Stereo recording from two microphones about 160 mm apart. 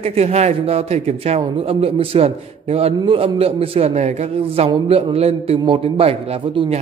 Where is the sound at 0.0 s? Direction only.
40° right (ahead or behind).